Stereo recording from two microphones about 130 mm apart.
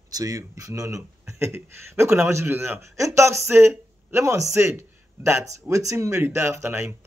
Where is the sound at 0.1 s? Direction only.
25° right (ahead or behind).